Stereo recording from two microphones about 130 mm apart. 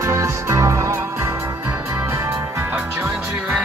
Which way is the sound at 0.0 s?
20° right (ahead or behind).